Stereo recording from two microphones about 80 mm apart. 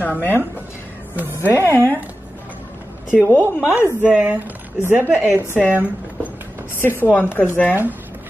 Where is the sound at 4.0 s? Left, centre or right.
Centre.